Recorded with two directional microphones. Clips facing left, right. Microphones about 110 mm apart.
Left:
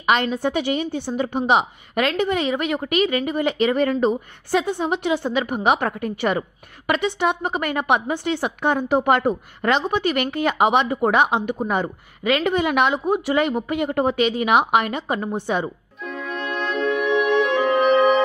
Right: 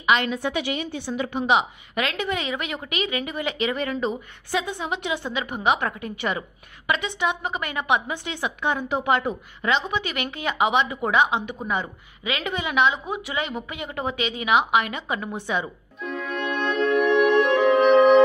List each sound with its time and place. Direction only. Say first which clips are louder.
0.0 s a woman's voice: left 2 dB; 40° left (ahead or behind)
16.1 s music: even; centre (ahead or behind)